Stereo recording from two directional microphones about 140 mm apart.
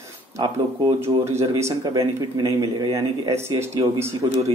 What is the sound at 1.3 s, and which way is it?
Speech, 20° right (ahead or behind).